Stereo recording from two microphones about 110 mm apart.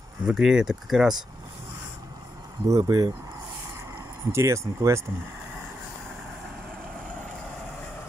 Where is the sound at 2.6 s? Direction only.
35° right (ahead or behind).